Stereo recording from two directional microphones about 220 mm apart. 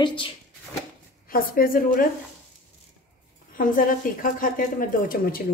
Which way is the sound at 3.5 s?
40° left (ahead or behind).